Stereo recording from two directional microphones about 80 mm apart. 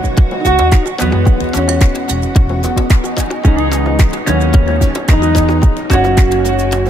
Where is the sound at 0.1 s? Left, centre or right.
Centre.